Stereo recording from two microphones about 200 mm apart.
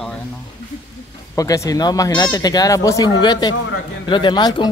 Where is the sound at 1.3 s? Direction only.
15° left (ahead or behind).